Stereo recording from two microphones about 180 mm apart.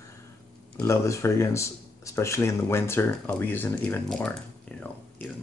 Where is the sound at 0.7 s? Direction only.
15° left (ahead or behind).